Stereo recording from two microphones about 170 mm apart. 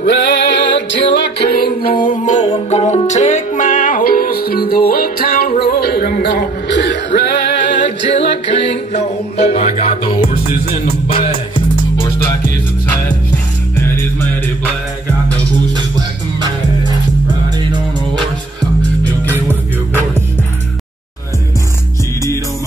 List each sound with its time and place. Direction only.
0.0 s music: 90° left
1.1 s music: 75° left (ahead or behind); by 5.5 s 60° left (ahead or behind)
5.6 s music: 70° left (ahead or behind); by 7.7 s 90° left
8.3 s music: 35° left (ahead or behind)
13.7 s music: 15° left (ahead or behind)